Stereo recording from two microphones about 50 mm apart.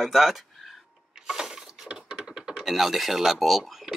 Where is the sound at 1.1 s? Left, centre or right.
Centre.